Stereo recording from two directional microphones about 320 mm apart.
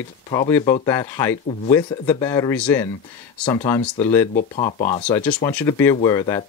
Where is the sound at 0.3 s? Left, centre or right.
Centre.